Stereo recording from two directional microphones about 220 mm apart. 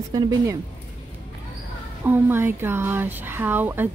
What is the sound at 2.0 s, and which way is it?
Speech, 10° right (ahead or behind).